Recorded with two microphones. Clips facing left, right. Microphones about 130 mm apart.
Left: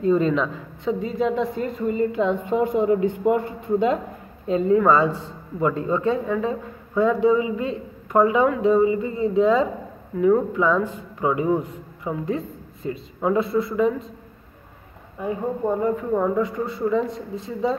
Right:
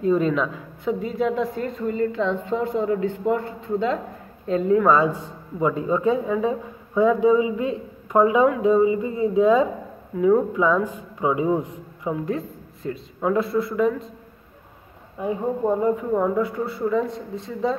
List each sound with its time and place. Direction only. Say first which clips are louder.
0.0 s a woman's voice: left 1 dB; 5° right (ahead or behind); by 4.0 s 15° left (ahead or behind)
4.5 s a man's voice: even; centre (ahead or behind); by 12.1 s 15° right (ahead or behind)
12.1 s speech: even; centre (ahead or behind)
15.2 s speech: right 1 dB; 5° right (ahead or behind)